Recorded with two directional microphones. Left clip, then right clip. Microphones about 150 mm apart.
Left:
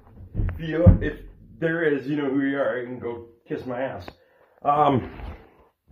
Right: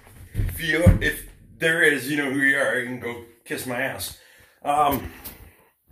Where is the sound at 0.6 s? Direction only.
5° right (ahead or behind).